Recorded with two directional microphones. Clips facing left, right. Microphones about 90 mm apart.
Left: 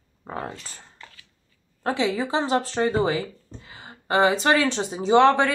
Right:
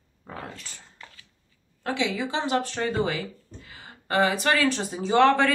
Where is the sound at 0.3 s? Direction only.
40° left (ahead or behind).